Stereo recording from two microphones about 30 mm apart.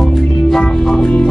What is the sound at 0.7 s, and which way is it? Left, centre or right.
Music, left.